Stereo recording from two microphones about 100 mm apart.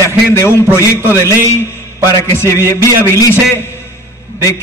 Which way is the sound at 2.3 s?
30° left (ahead or behind).